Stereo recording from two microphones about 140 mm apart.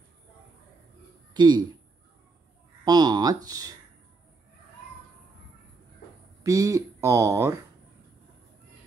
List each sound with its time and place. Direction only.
1.3 s speech: 30° right (ahead or behind)
2.8 s speech: 30° right (ahead or behind)
6.4 s speech: 20° right (ahead or behind)